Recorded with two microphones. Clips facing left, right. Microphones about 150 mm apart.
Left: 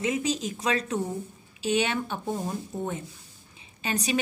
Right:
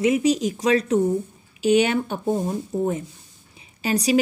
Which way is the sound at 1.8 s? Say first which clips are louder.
Right 7 dB; 35° right (ahead or behind).